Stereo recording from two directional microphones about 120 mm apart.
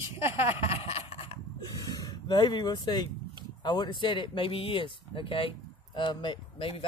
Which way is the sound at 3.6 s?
40° left (ahead or behind).